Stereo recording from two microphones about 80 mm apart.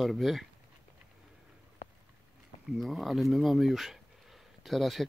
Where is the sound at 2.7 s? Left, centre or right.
Centre.